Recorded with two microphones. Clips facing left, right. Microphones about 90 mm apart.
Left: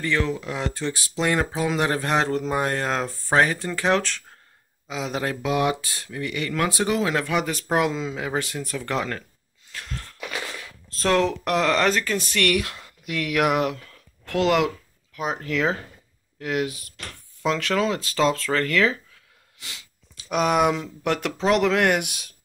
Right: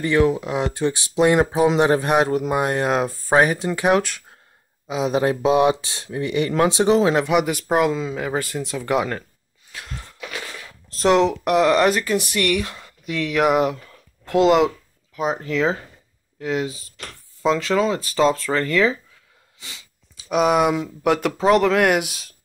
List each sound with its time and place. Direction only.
0.0 s speech: 15° right (ahead or behind)
9.7 s gasp: 10° right (ahead or behind)
10.9 s speech: 20° right (ahead or behind)
12.4 s speech: centre (ahead or behind)
13.8 s a sound: 5° right (ahead or behind)
15.1 s speech: centre (ahead or behind)